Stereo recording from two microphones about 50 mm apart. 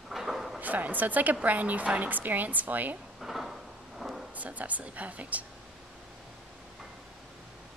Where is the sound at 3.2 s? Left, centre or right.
Centre.